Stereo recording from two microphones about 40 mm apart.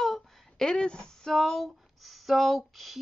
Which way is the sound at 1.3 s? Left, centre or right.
Centre.